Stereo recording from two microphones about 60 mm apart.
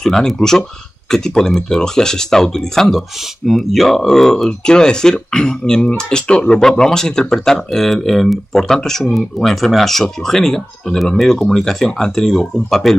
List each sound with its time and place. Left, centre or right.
0.0 s speech: centre